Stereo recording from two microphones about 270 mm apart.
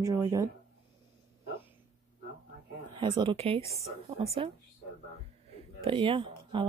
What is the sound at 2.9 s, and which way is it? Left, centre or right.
Speech, centre.